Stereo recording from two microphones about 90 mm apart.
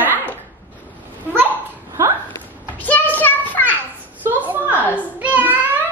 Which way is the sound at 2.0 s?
35° right (ahead or behind).